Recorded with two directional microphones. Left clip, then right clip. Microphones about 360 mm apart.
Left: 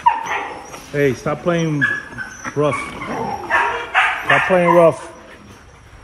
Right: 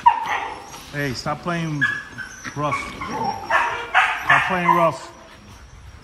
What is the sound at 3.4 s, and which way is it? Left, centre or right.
Bow-wow, right.